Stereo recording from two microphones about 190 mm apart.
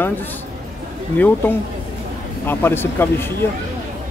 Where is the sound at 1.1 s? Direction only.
10° left (ahead or behind).